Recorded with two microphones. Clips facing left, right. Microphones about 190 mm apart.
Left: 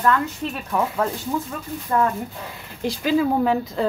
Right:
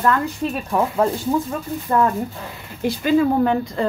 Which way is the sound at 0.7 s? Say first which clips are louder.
Right 3 dB; 30° right (ahead or behind).